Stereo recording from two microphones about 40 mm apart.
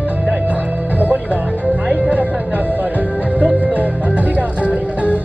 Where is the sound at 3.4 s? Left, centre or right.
Right.